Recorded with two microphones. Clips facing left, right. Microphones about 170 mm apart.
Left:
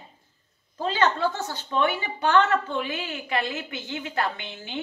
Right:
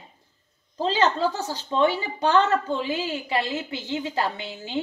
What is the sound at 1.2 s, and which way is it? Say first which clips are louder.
A woman's voice: right 2 dB; 35° right (ahead or behind).